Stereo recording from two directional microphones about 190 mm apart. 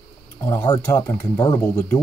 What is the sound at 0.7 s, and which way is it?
Speech, 15° left (ahead or behind).